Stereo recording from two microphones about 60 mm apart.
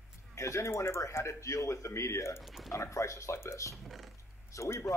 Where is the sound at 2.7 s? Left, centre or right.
Left.